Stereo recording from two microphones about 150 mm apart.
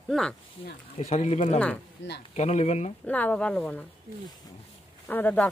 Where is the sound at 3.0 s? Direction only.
10° left (ahead or behind).